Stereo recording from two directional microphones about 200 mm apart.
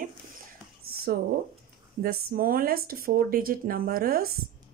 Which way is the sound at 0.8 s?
50° right (ahead or behind).